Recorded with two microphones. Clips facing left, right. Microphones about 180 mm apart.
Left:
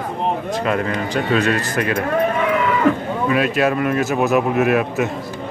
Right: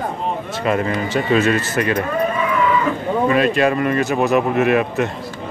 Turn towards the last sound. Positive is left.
turn(degrees=0)  # may be behind; listen again after turning